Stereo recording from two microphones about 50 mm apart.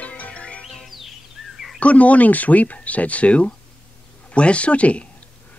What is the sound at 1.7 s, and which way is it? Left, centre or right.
Speech, left.